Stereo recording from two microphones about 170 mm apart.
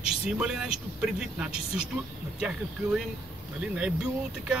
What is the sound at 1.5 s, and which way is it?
Speech, 35° left (ahead or behind).